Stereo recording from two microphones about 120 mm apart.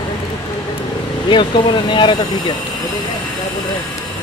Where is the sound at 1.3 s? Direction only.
40° left (ahead or behind).